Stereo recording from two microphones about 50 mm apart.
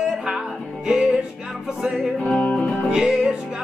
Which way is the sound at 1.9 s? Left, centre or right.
Centre.